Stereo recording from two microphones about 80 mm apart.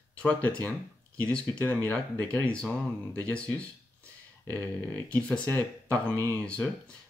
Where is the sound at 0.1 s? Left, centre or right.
Centre.